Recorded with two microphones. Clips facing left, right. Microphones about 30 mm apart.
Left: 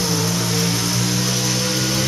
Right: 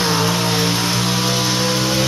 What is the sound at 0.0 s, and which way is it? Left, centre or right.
Vehicle, right.